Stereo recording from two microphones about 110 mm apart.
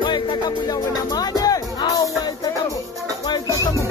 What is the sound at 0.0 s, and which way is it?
Music, 45° left (ahead or behind).